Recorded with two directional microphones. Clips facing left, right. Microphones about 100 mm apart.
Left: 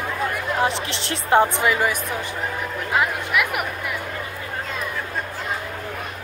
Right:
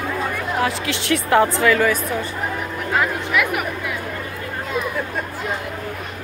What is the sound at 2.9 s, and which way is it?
Speech, 5° left (ahead or behind).